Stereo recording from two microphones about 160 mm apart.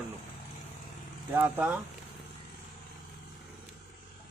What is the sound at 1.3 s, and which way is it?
Speech, 10° right (ahead or behind).